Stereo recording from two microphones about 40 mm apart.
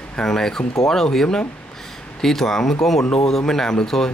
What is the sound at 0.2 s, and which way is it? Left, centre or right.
Speech, centre.